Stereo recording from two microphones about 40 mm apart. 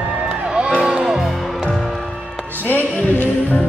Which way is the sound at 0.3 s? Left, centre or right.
Centre.